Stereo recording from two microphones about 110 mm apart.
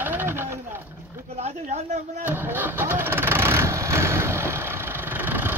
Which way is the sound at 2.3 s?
20° right (ahead or behind).